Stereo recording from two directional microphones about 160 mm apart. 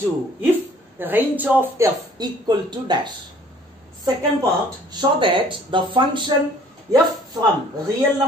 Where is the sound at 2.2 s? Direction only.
25° right (ahead or behind).